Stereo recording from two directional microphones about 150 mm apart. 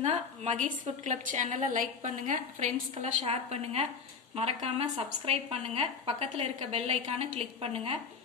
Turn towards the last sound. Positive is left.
turn(degrees=-40)  # may be behind; listen again after turning